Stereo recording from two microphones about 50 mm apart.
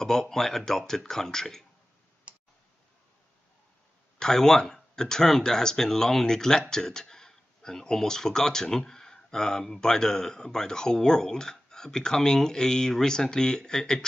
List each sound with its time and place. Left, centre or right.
0.0 s speech: centre
2.3 s tick: right
4.2 s speech: centre